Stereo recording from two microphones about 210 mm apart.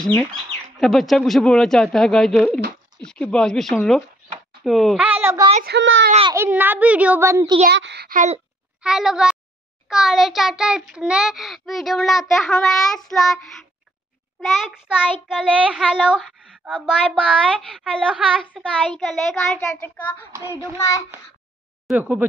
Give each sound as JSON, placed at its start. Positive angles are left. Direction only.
{"t": 0.0, "sound": "child singing", "side_deg": 5}
{"t": 4.6, "sound": "a child's voice", "side_deg": 0}
{"t": 5.5, "sound": "a woman's voice", "side_deg": -40}
{"t": 5.8, "sound": "speech", "side_deg": -65}
{"t": 6.0, "sound": "a child's voice", "side_deg": -30}
{"t": 6.3, "sound": "a child's voice", "side_deg": -10}
{"t": 7.7, "sound": "a child's voice", "side_deg": -55}
{"t": 8.8, "sound": "child singing", "side_deg": -5}
{"t": 14.4, "sound": "child singing", "side_deg": 0}
{"t": 21.8, "sound": "a child's voice", "side_deg": -5}